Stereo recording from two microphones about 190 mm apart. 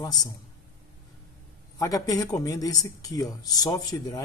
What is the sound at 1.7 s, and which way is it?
Speech, 20° left (ahead or behind).